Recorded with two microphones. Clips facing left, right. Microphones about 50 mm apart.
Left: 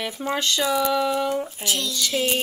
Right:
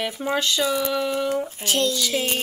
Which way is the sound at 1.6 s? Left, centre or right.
Right.